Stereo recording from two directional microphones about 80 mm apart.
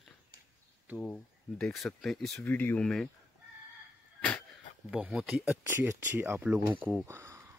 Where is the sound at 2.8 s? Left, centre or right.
Centre.